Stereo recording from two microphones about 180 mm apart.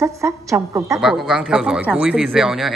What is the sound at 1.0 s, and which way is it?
Speech, 5° right (ahead or behind).